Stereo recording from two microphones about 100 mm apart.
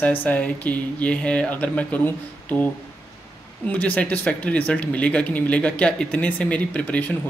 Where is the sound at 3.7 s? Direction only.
15° left (ahead or behind).